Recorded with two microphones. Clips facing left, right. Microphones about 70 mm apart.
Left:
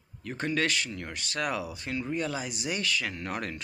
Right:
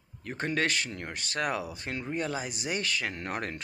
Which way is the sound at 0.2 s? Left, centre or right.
Right.